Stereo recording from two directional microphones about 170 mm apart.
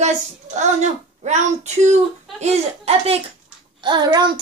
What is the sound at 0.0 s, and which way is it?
A woman's voice, 45° right (ahead or behind).